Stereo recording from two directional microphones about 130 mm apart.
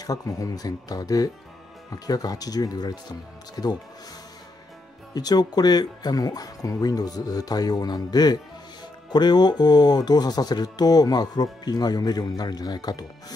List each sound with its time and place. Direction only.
0.0 s speech: 25° left (ahead or behind)
5.1 s speech: 30° left (ahead or behind)